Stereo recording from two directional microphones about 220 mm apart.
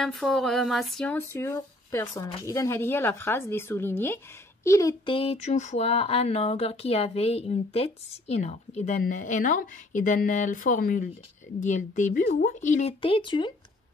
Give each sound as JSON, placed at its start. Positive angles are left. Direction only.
{"t": 0.0, "sound": "speech", "side_deg": 0}